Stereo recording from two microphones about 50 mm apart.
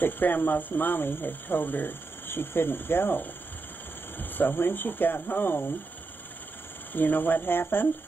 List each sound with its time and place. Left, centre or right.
0.0 s speech: left
6.9 s speech: left